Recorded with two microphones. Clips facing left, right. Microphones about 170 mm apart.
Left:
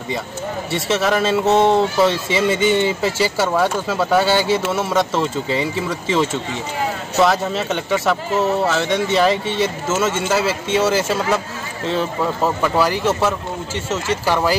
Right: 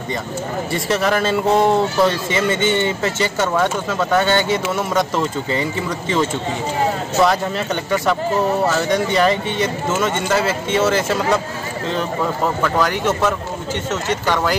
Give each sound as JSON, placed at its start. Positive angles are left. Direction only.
{"t": 0.7, "sound": "speech", "side_deg": 0}
{"t": 12.6, "sound": "speech", "side_deg": 10}